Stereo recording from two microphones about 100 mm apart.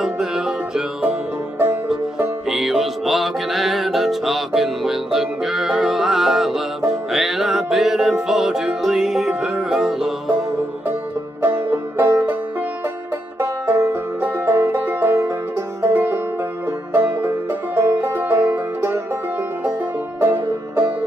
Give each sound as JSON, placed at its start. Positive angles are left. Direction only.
{"t": 0.0, "sound": "music", "side_deg": -5}
{"t": 2.5, "sound": "music", "side_deg": 0}
{"t": 11.4, "sound": "banjo", "side_deg": -20}
{"t": 13.4, "sound": "music", "side_deg": -25}
{"t": 20.2, "sound": "music", "side_deg": -25}